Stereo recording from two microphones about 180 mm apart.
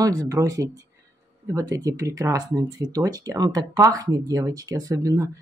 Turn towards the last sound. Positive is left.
turn(degrees=-20)  # may be behind; listen again after turning